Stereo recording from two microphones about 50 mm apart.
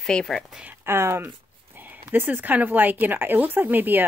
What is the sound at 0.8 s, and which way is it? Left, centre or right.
Speech, right.